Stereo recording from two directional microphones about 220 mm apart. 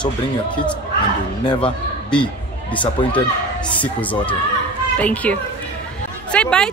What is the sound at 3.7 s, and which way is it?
Speech, 5° left (ahead or behind).